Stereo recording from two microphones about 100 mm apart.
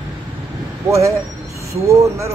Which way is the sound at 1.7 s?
30° right (ahead or behind).